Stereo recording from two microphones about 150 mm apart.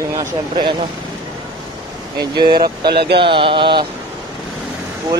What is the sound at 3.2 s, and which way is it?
Speech, 35° right (ahead or behind).